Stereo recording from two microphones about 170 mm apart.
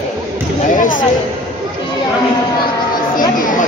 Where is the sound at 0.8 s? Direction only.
50° left (ahead or behind).